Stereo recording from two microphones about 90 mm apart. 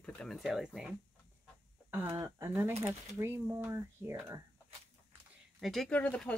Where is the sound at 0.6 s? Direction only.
10° right (ahead or behind).